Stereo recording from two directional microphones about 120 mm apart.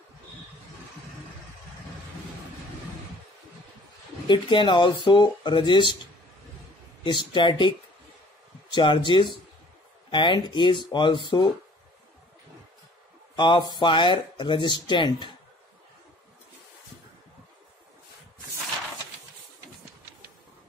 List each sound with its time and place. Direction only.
4.3 s speech: 45° left (ahead or behind)
7.0 s speech: 40° left (ahead or behind)
8.7 s speech: 40° left (ahead or behind)
13.4 s speech: 40° left (ahead or behind)